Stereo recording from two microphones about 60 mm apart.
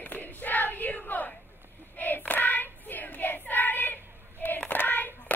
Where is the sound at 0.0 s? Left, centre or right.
Left.